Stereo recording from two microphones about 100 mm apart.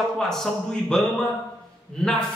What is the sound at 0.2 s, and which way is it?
A man's voice, 5° left (ahead or behind).